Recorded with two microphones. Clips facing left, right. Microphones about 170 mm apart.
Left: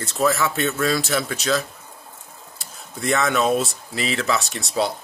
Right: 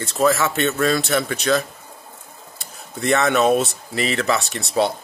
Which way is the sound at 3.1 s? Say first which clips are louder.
Right 3 dB; 60° right (ahead or behind).